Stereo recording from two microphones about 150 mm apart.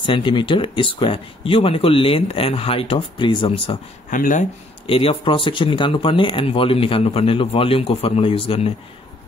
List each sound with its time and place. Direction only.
0.0 s speech: 35° left (ahead or behind)
4.1 s speech: 60° left (ahead or behind)
4.8 s speech: 35° left (ahead or behind)